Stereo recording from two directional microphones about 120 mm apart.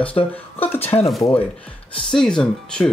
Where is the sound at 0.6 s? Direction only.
15° left (ahead or behind).